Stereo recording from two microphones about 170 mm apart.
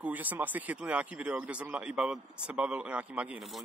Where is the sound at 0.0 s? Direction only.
10° right (ahead or behind).